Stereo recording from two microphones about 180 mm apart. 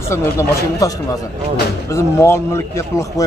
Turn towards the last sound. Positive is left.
turn(degrees=15)  # may be behind; listen again after turning